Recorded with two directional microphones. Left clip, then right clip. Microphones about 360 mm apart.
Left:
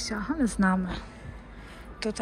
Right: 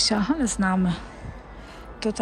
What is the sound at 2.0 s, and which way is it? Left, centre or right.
Speech, centre.